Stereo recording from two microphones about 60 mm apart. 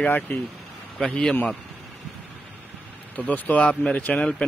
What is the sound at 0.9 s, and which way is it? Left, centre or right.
Speech, centre.